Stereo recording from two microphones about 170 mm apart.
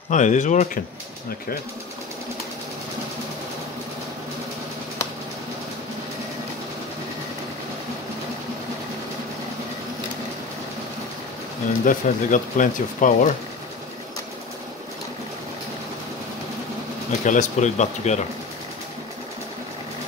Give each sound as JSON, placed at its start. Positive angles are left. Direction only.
{"t": 0.1, "sound": "speech", "side_deg": 45}
{"t": 11.8, "sound": "speech", "side_deg": 50}
{"t": 17.2, "sound": "speech", "side_deg": 45}